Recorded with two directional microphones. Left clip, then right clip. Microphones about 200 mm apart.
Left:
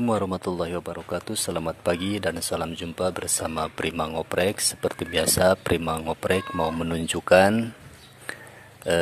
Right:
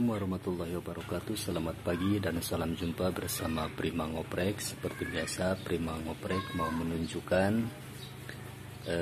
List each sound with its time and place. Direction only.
0.0 s speech: 45° left (ahead or behind)